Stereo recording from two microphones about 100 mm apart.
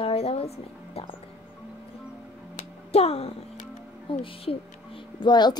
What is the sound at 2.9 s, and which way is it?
Speech, 90° left.